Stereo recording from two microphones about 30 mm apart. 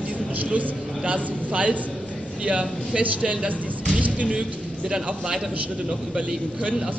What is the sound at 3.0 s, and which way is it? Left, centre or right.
Speech, right.